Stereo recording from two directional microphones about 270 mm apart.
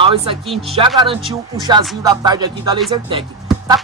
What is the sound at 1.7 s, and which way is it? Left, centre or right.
Music, centre.